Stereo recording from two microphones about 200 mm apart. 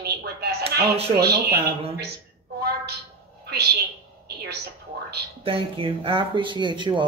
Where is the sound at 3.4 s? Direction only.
55° right (ahead or behind).